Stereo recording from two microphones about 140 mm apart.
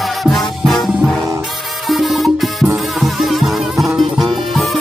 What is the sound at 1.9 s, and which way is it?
Music, centre (ahead or behind).